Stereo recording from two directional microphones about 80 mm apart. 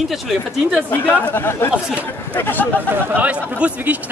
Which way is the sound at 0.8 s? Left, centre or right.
Left.